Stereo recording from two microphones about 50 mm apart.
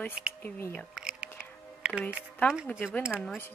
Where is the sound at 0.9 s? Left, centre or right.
Centre.